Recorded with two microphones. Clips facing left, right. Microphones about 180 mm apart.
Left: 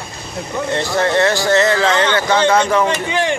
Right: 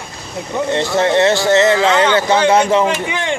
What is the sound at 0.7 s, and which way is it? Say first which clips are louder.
Speech: right 2 dB; 20° right (ahead or behind).